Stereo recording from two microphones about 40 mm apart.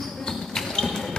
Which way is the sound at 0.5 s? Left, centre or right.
Centre.